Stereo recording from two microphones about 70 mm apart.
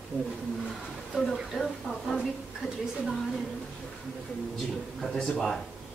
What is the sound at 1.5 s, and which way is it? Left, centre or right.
Speech, centre.